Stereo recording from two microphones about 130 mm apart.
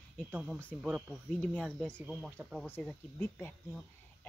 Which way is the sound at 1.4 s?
5° left (ahead or behind).